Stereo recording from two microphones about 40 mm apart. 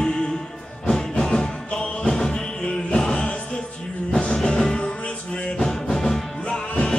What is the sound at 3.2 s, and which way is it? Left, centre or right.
Music, left.